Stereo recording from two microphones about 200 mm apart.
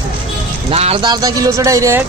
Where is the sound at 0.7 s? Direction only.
30° right (ahead or behind).